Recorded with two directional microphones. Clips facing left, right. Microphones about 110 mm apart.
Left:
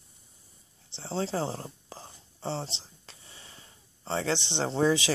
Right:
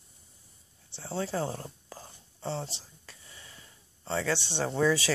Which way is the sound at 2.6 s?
25° left (ahead or behind).